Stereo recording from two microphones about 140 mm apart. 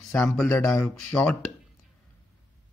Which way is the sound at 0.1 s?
5° left (ahead or behind).